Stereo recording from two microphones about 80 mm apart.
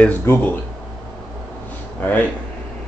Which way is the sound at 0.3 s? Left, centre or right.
Left.